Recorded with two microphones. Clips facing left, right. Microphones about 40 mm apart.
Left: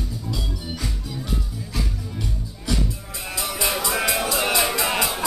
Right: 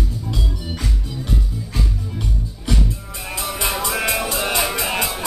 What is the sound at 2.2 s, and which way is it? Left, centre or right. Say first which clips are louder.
Music: right 3 dB; right.